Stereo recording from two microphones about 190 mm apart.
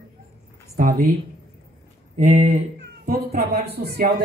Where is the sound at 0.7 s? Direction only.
50° right (ahead or behind).